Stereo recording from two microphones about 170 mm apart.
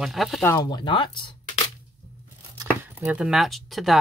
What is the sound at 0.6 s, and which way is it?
Speech, 25° left (ahead or behind).